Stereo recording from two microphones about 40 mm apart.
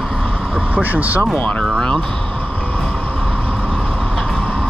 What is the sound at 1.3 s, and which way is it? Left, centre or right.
Speech, left.